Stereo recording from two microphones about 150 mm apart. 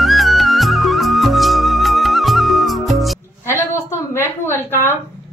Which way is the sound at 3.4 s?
15° left (ahead or behind).